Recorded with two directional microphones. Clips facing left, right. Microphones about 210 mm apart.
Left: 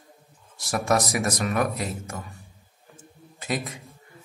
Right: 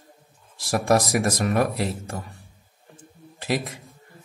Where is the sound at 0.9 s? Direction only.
30° right (ahead or behind).